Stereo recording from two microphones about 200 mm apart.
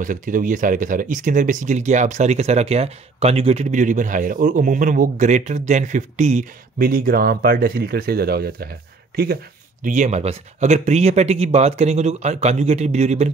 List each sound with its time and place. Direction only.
0.0 s speech: 40° right (ahead or behind)
9.8 s speech: 35° right (ahead or behind)